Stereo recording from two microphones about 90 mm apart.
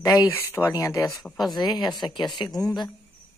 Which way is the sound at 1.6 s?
55° left (ahead or behind).